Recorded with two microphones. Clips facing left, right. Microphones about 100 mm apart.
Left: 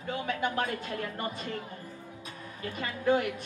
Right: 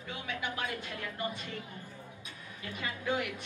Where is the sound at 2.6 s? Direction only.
40° left (ahead or behind).